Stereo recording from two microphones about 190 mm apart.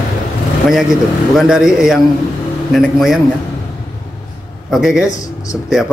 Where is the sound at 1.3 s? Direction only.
Centre (ahead or behind).